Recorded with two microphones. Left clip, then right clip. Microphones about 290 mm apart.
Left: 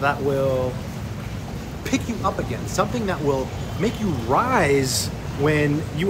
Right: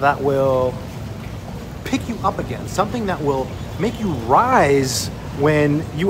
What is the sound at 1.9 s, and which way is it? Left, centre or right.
Speech, centre.